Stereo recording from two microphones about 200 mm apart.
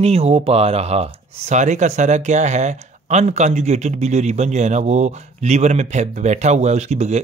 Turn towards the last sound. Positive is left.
turn(degrees=-35)  # may be behind; listen again after turning